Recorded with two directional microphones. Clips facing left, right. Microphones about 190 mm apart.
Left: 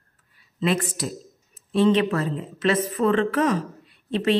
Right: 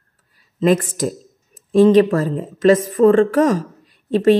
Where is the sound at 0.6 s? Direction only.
45° right (ahead or behind).